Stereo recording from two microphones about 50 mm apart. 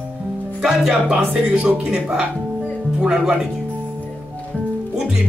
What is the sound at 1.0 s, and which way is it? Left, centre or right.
Speech, right.